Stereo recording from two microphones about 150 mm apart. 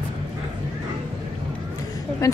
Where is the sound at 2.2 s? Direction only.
20° left (ahead or behind).